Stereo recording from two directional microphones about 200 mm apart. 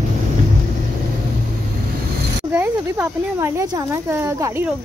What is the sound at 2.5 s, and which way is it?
Speech, 10° right (ahead or behind).